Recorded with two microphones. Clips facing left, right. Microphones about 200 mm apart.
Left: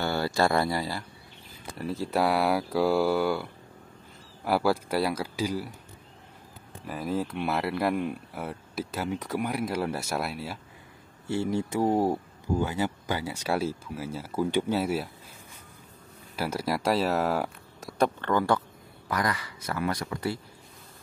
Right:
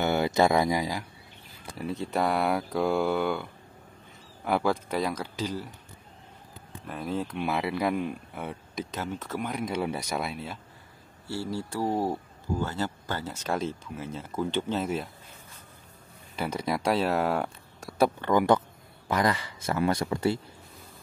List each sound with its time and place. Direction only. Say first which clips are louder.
0.0 s speech: right 2 dB; 20° right (ahead or behind)
1.8 s speech: left 1 dB; centre (ahead or behind)
4.5 s speech: left 1 dB; 5° left (ahead or behind)
6.9 s speech: left 2 dB; 5° left (ahead or behind)
11.2 s speech: left 5 dB; 20° left (ahead or behind)
16.3 s speech: even; 5° left (ahead or behind); by 20.3 s 25° right (ahead or behind)